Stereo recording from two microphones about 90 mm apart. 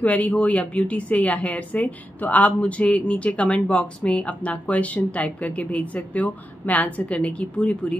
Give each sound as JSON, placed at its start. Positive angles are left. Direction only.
{"t": 0.0, "sound": "a woman's voice", "side_deg": 15}